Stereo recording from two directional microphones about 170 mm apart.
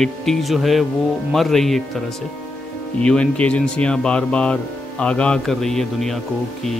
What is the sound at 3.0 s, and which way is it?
Speech, 5° left (ahead or behind).